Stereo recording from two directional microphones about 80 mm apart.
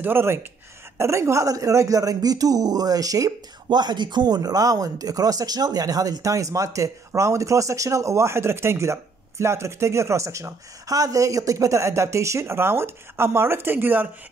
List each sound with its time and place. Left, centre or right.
0.0 s speech: right
3.6 s speech: right